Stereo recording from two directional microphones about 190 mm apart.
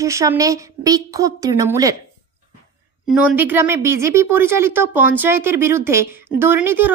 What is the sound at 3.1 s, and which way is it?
Speech, 10° right (ahead or behind).